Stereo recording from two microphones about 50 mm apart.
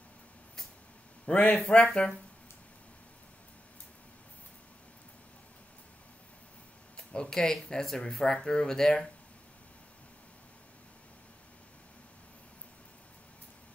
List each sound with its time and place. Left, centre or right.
1.2 s speech: left
7.0 s speech: centre